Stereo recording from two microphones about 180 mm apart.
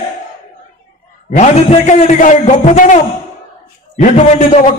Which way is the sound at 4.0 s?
40° left (ahead or behind).